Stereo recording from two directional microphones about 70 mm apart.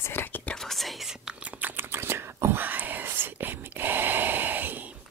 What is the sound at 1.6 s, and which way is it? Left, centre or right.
Whispering, right.